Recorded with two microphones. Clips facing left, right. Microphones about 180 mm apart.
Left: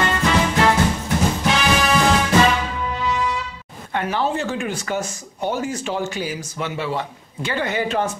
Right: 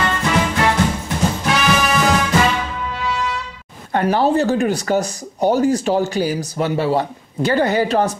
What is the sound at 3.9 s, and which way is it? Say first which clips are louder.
Speech: right 6 dB; 40° right (ahead or behind).